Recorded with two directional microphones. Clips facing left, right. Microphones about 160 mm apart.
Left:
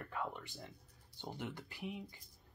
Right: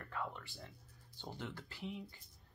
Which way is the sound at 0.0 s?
15° left (ahead or behind).